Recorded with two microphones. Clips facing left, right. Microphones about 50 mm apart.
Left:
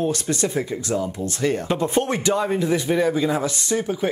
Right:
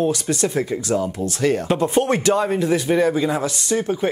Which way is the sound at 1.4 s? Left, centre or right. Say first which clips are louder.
Right 3 dB; right.